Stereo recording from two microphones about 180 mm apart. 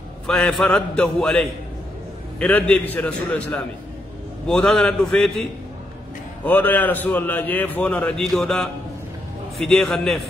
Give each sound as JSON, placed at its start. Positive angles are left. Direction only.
{"t": 0.3, "sound": "a man's voice", "side_deg": 5}